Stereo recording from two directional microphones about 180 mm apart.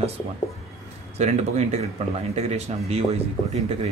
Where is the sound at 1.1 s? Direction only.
40° right (ahead or behind).